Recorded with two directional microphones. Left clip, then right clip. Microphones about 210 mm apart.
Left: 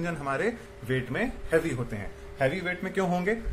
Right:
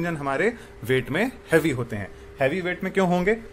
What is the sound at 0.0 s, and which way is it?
A man's voice, 35° right (ahead or behind).